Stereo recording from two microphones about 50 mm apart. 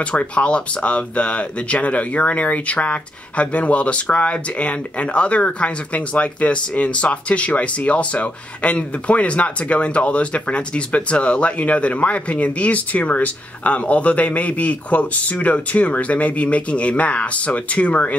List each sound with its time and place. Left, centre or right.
0.0 s speech: left